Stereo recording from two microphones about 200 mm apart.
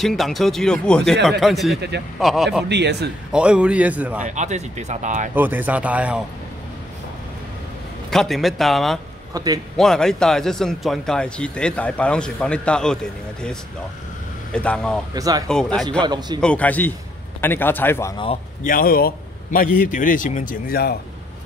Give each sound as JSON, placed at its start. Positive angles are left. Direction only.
{"t": 0.0, "sound": "a man's voice", "side_deg": 0}
{"t": 2.7, "sound": "speech", "side_deg": -60}
{"t": 3.3, "sound": "a man's voice", "side_deg": -5}
{"t": 4.4, "sound": "speech", "side_deg": -35}
{"t": 5.3, "sound": "a man's voice", "side_deg": -10}
{"t": 8.1, "sound": "a man's voice", "side_deg": 0}
{"t": 9.3, "sound": "a man's voice", "side_deg": -20}
{"t": 9.8, "sound": "a man's voice", "side_deg": 0}
{"t": 15.1, "sound": "a man's voice", "side_deg": -15}
{"t": 15.4, "sound": "a man's voice", "side_deg": 5}
{"t": 16.0, "sound": "a man's voice", "side_deg": -20}
{"t": 16.3, "sound": "a man's voice", "side_deg": 5}
{"t": 18.1, "sound": "speech", "side_deg": 25}
{"t": 18.6, "sound": "a man's voice", "side_deg": 45}